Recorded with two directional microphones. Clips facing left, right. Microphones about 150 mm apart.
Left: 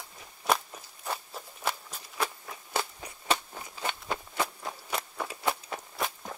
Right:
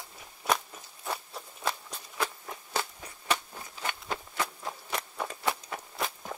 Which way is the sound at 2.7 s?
15° left (ahead or behind).